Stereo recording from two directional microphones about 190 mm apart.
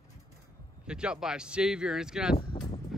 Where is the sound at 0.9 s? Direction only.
5° right (ahead or behind).